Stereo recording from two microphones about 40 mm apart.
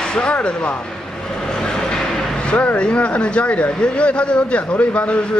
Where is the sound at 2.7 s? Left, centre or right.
Left.